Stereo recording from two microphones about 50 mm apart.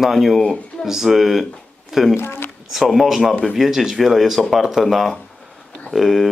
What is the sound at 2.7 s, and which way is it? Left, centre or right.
Speech, centre.